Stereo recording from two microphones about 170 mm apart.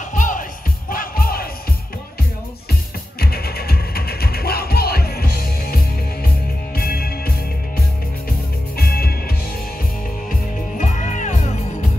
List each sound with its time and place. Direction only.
0.1 s music: 50° left (ahead or behind)
3.2 s music: 65° left (ahead or behind)
10.8 s music: 45° left (ahead or behind)